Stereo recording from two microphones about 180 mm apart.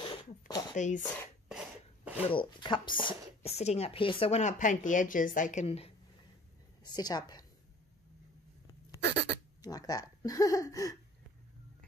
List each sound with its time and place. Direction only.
0.0 s a sound: 30° left (ahead or behind)
0.7 s speech: 45° left (ahead or behind)
1.5 s a sound: 5° right (ahead or behind)
2.2 s speech: 30° left (ahead or behind)
6.8 s a woman's voice: 20° left (ahead or behind)
9.6 s speech: 20° left (ahead or behind)